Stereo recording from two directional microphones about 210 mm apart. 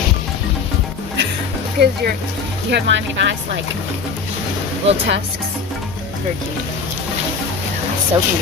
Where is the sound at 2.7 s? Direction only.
60° right (ahead or behind).